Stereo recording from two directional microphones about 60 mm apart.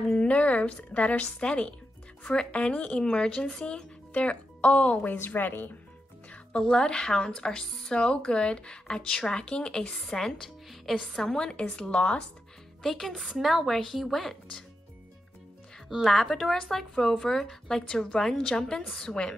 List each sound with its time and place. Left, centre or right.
0.1 s speech: left
5.2 s speech: left
6.6 s a woman's voice: centre
15.9 s speech: centre